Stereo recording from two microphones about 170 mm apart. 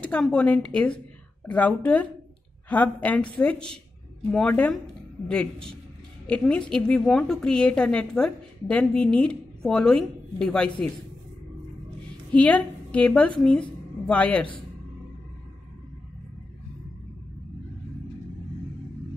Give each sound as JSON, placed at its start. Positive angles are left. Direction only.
{"t": 0.0, "sound": "a woman's voice", "side_deg": 5}
{"t": 12.3, "sound": "a woman's voice", "side_deg": 5}